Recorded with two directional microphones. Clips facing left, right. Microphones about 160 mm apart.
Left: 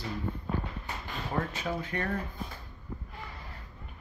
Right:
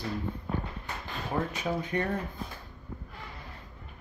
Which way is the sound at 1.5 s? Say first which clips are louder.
Right 3 dB; 15° right (ahead or behind).